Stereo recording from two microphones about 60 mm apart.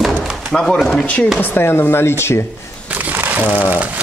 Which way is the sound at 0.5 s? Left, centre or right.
Centre.